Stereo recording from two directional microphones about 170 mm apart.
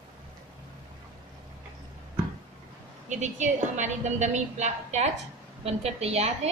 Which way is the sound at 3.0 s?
45° right (ahead or behind).